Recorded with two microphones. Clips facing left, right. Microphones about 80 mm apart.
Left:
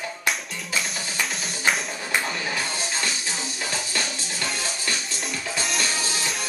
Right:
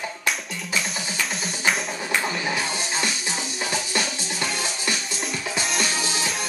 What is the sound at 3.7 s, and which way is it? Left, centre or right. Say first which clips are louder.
Music: right 4 dB; centre.